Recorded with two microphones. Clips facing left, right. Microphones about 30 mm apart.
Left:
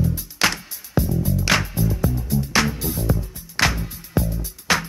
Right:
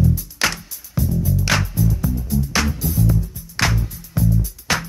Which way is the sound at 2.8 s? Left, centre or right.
Left.